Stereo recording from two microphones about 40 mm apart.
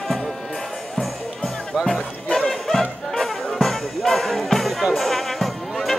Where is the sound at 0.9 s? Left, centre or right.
Centre.